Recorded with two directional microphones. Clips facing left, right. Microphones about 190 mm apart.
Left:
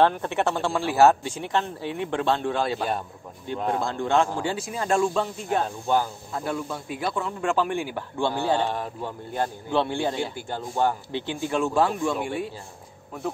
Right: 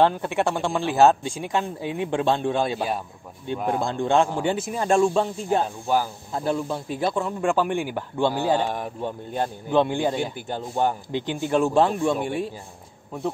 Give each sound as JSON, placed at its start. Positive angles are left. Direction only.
{"t": 0.0, "sound": "speech", "side_deg": -15}
{"t": 5.9, "sound": "speech", "side_deg": -10}
{"t": 6.3, "sound": "speech", "side_deg": -25}
{"t": 7.2, "sound": "speech", "side_deg": -15}